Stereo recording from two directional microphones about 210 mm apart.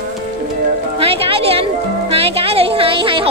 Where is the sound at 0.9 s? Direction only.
25° right (ahead or behind).